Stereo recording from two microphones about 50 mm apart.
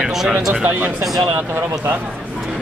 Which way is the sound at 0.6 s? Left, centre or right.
Right.